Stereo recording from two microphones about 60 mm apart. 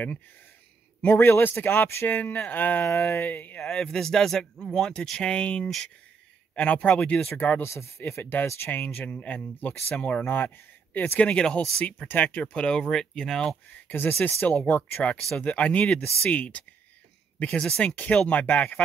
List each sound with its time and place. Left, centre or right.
1.0 s a man's voice: left
2.9 s a sound: left
3.3 s speech: left
3.6 s speech: centre
7.0 s speech: centre
7.2 s a man's voice: left
7.6 s a sound: left
8.2 s a man's voice: left
10.2 s speech: left
11.1 s speech: centre
13.8 s a man's voice: left; by 17.9 s centre
17.9 s speech: left